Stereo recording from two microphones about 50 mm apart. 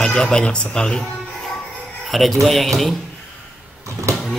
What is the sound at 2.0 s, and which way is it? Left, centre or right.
Speech, centre.